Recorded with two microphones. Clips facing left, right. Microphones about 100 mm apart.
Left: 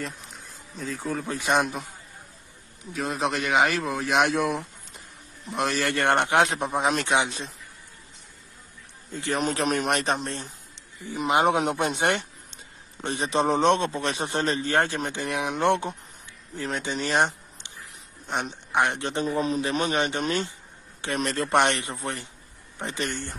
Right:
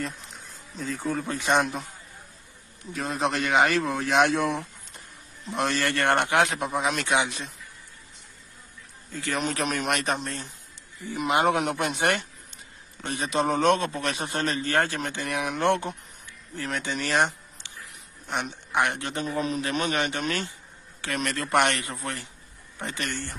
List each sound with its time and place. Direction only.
0.0 s speech: centre (ahead or behind)
2.9 s a man's voice: centre (ahead or behind)
5.9 s a man's voice: 20° left (ahead or behind)
9.1 s a man's voice: 20° left (ahead or behind)
9.4 s speech: 35° left (ahead or behind)
11.1 s a man's voice: 20° left (ahead or behind)